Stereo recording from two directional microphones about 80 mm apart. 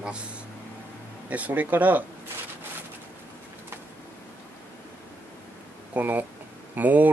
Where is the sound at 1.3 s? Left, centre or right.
Centre.